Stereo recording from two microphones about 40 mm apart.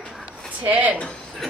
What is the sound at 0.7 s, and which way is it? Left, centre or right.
Speech, right.